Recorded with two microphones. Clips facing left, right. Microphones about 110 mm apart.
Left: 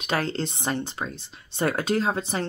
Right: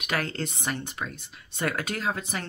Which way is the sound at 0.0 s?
30° left (ahead or behind).